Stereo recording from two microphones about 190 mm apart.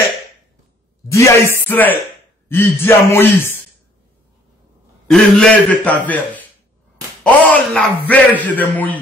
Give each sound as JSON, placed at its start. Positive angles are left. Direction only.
{"t": 1.1, "sound": "speech", "side_deg": 15}
{"t": 5.0, "sound": "a man's voice", "side_deg": 0}